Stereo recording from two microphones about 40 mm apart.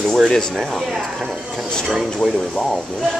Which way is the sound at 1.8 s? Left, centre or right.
Centre.